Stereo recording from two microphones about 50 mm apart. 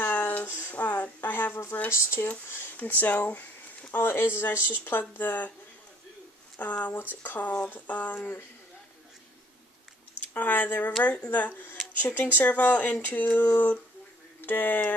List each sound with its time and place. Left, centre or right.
0.0 s a sound: left
0.7 s a woman's voice: left
2.8 s speech: left
3.9 s speech: left
4.6 s speech: right
5.1 s speech: left
6.6 s speech: left
10.3 s speech: left